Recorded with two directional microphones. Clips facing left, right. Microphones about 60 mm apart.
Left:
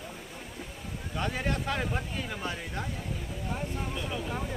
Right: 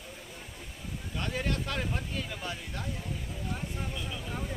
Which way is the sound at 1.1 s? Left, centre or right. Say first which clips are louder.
Left 2 dB; centre.